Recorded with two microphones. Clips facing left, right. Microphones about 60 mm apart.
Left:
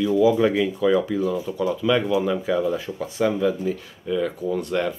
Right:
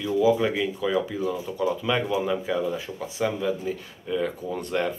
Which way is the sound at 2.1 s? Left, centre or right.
Centre.